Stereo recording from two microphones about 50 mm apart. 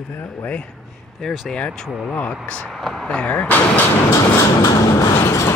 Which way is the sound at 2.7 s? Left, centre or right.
Centre.